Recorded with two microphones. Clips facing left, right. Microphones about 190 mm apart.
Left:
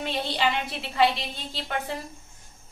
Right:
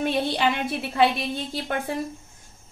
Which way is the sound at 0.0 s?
50° right (ahead or behind).